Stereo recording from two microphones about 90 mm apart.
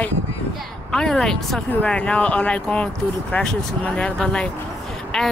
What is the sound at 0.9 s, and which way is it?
Speech, 5° left (ahead or behind).